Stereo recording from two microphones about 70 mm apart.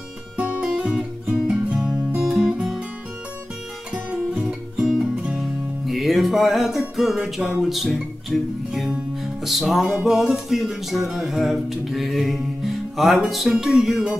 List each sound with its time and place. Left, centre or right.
0.7 s guitar: centre
3.9 s music: centre